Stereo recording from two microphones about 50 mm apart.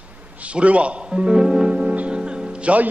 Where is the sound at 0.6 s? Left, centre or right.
Right.